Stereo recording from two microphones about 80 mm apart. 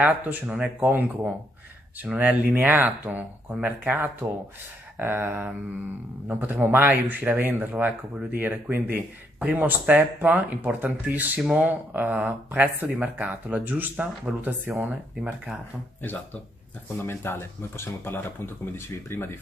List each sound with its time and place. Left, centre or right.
0.0 s speech: centre
3.5 s speech: centre
4.9 s speech: right
17.0 s speech: left